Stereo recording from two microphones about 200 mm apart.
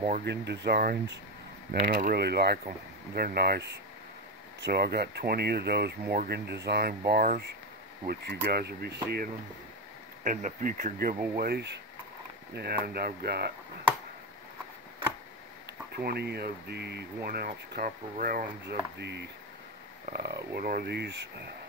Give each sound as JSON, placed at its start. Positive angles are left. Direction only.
{"t": 0.2, "sound": "speech", "side_deg": -55}
{"t": 10.2, "sound": "speech", "side_deg": -40}
{"t": 16.0, "sound": "speech", "side_deg": -50}
{"t": 18.9, "sound": "speech", "side_deg": -55}